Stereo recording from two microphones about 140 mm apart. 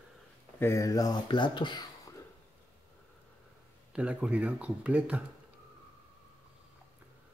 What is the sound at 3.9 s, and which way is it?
Speech, 10° right (ahead or behind).